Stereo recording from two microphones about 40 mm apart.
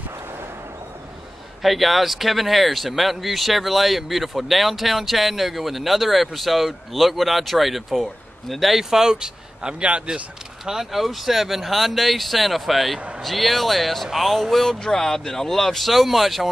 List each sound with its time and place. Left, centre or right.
1.6 s speech: centre; by 10.2 s right
10.6 s speech: centre